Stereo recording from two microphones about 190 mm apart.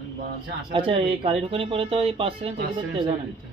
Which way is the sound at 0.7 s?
30° right (ahead or behind).